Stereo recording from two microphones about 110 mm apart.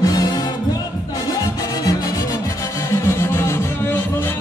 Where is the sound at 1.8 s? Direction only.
35° left (ahead or behind).